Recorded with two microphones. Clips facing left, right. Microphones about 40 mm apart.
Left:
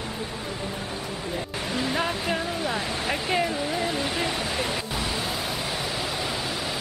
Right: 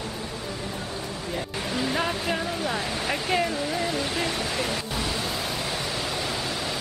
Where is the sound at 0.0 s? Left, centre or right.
Centre.